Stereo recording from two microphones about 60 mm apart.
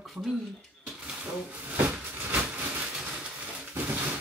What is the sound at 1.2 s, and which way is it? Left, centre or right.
Speech, right.